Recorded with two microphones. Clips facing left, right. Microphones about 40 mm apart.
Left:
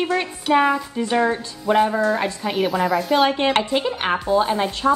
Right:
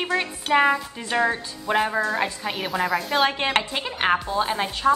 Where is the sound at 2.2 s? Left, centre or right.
Centre.